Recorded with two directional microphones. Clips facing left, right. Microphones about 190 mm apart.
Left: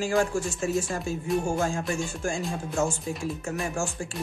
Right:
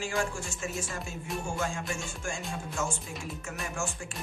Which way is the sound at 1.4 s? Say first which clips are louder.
Left 6 dB; 35° left (ahead or behind).